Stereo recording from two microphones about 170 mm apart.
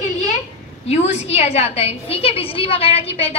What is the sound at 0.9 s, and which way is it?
A woman's voice, 40° left (ahead or behind).